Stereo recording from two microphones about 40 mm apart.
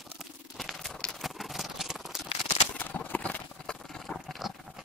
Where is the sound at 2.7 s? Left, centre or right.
Left.